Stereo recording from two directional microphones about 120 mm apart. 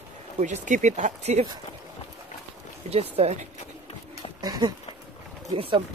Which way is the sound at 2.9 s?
60° right (ahead or behind).